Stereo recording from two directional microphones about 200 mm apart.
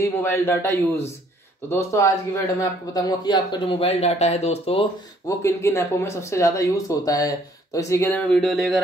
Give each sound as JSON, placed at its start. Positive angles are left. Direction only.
{"t": 0.0, "sound": "speech", "side_deg": 10}
{"t": 5.4, "sound": "speech", "side_deg": 15}